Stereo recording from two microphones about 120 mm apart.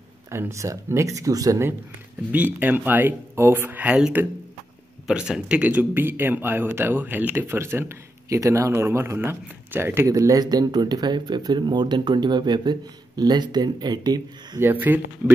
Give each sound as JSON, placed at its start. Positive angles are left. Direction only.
{"t": 0.3, "sound": "speech", "side_deg": -25}
{"t": 2.3, "sound": "speech", "side_deg": -15}
{"t": 14.6, "sound": "speech", "side_deg": -15}